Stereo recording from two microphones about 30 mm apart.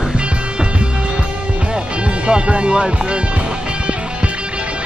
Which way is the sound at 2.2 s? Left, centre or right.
Right.